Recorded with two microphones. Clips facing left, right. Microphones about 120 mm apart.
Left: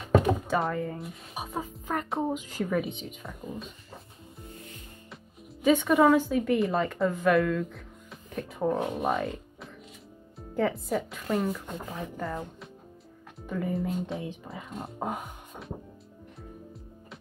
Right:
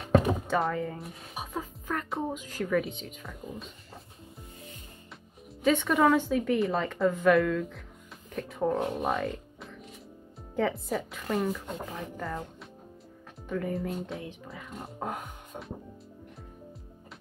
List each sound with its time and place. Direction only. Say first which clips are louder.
0.5 s speech: even; centre (ahead or behind)
1.5 s music: left 2 dB; 20° left (ahead or behind)
2.5 s a woman's voice: even; 15° left (ahead or behind)
5.6 s a woman's voice: left 3 dB; 5° left (ahead or behind)
15.0 s music: left 2 dB; 10° left (ahead or behind)